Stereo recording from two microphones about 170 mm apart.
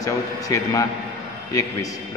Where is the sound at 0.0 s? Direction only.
20° left (ahead or behind).